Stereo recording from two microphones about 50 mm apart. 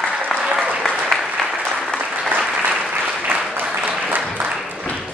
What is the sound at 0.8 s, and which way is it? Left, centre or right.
Applause, centre.